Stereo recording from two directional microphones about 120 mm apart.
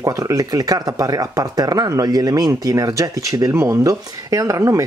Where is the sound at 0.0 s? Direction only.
30° right (ahead or behind).